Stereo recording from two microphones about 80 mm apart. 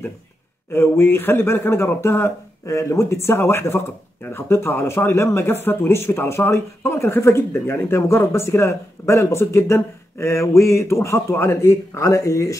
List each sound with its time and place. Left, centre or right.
0.7 s speech: left